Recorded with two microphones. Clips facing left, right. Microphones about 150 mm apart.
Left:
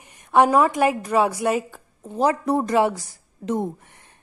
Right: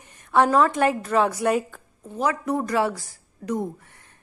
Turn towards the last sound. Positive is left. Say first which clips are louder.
# left 2 dB
turn(degrees=25)  # may be behind; listen again after turning